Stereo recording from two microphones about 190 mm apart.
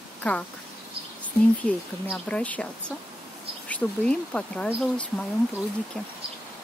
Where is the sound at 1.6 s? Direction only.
5° left (ahead or behind).